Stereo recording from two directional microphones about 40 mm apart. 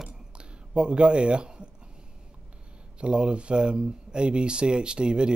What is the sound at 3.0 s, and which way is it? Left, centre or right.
Speech, right.